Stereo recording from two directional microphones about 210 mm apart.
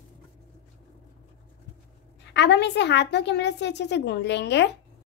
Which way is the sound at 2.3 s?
55° left (ahead or behind).